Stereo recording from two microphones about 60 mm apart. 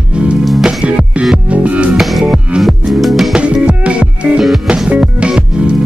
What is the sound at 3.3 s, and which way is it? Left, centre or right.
Music, centre.